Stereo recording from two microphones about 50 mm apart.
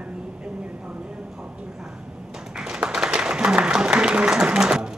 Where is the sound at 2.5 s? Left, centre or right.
Centre.